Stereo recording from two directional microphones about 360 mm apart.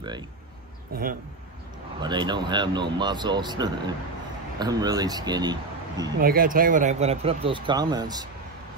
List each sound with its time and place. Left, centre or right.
0.9 s speech: right
2.0 s speech: centre
6.2 s speech: right